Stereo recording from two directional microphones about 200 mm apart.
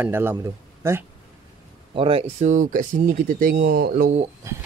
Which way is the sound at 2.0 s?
25° right (ahead or behind).